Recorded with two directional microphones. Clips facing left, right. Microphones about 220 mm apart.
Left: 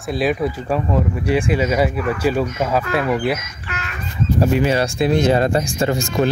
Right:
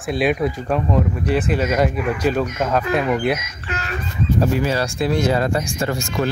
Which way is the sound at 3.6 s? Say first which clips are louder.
Right 3 dB; 35° right (ahead or behind).